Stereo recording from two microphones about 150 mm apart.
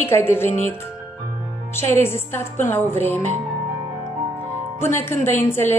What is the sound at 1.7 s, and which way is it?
A woman's voice, 15° left (ahead or behind).